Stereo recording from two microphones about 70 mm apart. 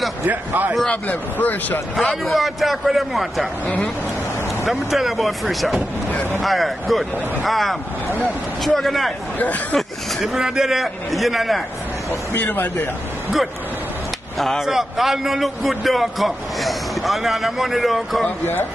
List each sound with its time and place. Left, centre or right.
0.2 s a man's voice: right
0.8 s speech: left
2.0 s a man's voice: centre
3.6 s speech: left
4.6 s a man's voice: centre
9.4 s speech: left
9.8 s a man's voice: centre
12.4 s speech: left
14.4 s a man's voice: centre